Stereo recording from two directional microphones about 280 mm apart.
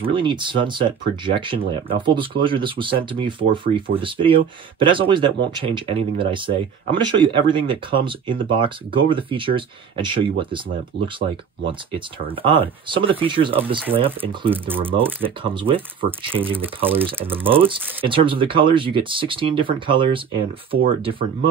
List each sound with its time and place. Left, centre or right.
0.0 s speech: centre
12.3 s speech: centre
14.5 s speech: centre
14.9 s speech: centre
16.5 s speech: centre
17.2 s speech: centre